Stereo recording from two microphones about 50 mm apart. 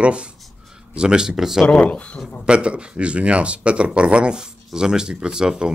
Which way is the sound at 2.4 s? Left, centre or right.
Right.